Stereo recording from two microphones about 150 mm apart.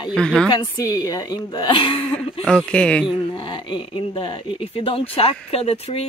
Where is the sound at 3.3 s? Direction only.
30° left (ahead or behind).